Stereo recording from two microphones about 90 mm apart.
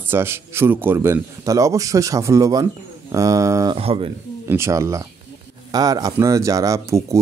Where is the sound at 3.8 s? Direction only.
90° right.